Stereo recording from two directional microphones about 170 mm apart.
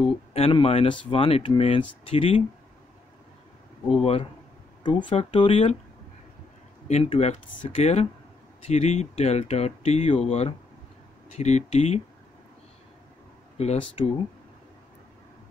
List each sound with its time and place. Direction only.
0.3 s speech: 35° left (ahead or behind)
4.0 s speech: 35° left (ahead or behind)
6.9 s speech: 40° left (ahead or behind)
13.6 s speech: 35° left (ahead or behind)